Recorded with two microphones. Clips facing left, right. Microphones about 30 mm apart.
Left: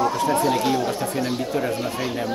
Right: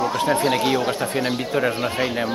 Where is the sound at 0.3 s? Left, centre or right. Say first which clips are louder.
Right 1 dB; right.